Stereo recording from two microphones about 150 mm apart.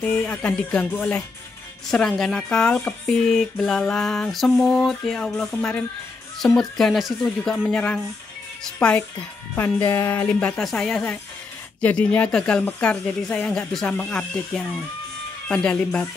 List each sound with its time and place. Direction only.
0.0 s speech: 10° left (ahead or behind)